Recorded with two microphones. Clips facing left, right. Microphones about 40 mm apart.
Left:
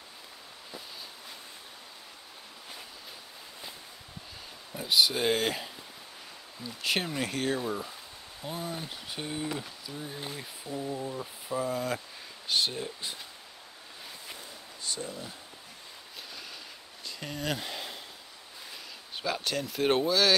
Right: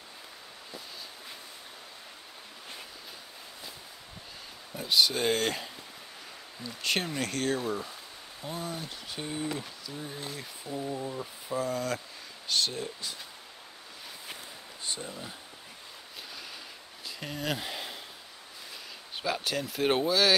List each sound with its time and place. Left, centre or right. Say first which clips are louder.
4.7 s speech: even; centre
10.7 s speech: even; centre
14.8 s a sound: left 1 dB; right
15.0 s speech: left 1 dB; centre
17.0 s a sound: even; centre
19.1 s speech: even; centre